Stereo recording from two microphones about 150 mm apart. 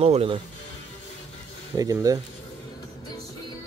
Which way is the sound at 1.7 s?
25° right (ahead or behind).